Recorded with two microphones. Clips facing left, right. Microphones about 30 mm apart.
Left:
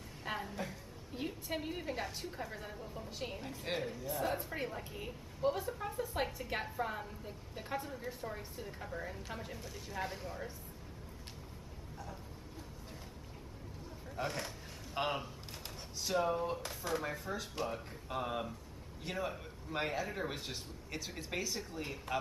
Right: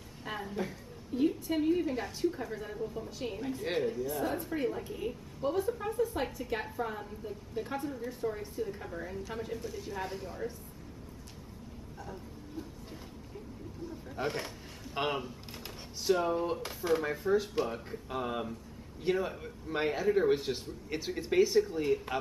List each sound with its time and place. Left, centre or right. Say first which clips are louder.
0.2 s a sound: right 1 dB; centre
0.5 s a woman's voice: right 6 dB; centre
1.1 s a woman's voice: right 10 dB; centre
4.1 s a woman's voice: right 4 dB; centre
14.0 s a man's voice: right 4 dB; centre